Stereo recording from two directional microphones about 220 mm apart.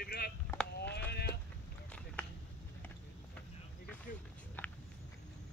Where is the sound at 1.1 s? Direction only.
50° left (ahead or behind).